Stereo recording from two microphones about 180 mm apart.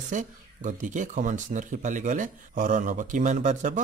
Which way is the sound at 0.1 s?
45° right (ahead or behind).